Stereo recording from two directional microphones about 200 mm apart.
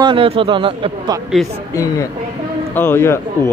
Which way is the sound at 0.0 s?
25° right (ahead or behind).